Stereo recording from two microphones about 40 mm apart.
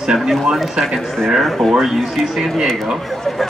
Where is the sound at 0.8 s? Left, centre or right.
Centre.